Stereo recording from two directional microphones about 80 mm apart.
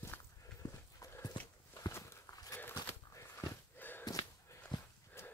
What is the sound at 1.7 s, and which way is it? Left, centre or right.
Walk, left.